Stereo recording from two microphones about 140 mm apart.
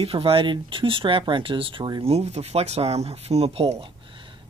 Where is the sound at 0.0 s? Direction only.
40° right (ahead or behind).